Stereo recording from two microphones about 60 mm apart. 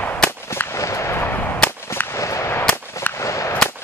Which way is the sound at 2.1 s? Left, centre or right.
Left.